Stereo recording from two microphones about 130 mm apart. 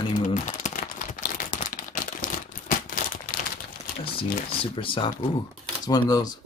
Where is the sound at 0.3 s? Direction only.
70° left (ahead or behind); by 3.0 s 90° left.